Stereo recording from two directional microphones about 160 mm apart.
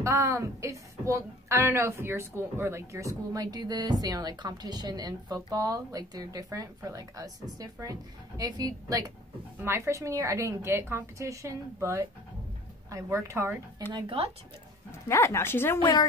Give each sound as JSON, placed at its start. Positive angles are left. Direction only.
{"t": 0.0, "sound": "a woman's voice", "side_deg": -20}
{"t": 13.9, "sound": "speech", "side_deg": -35}
{"t": 14.9, "sound": "speech", "side_deg": 15}
{"t": 15.8, "sound": "speech", "side_deg": 30}